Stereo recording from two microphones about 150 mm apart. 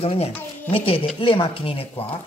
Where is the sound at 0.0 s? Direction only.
40° left (ahead or behind).